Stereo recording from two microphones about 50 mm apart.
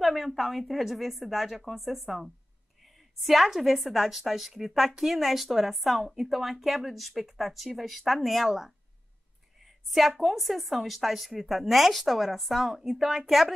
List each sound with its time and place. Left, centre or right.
0.0 s a woman's voice: centre